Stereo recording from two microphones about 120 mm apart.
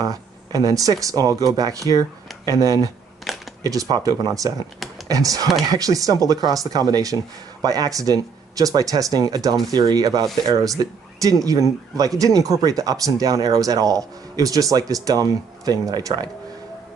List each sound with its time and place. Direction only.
0.0 s speech: 30° right (ahead or behind)
3.3 s camera: centre (ahead or behind)
3.6 s speech: 30° right (ahead or behind)